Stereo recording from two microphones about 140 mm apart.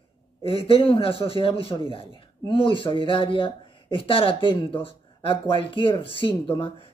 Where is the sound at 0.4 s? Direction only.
40° left (ahead or behind).